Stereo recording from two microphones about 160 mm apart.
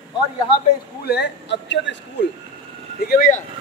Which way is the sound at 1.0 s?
90° left.